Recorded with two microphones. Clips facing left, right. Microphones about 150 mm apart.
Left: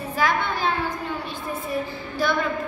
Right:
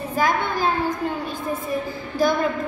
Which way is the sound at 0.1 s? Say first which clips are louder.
Right 2 dB; 45° right (ahead or behind).